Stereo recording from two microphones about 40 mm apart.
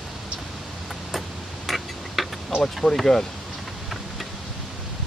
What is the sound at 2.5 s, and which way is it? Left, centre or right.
Speech, right.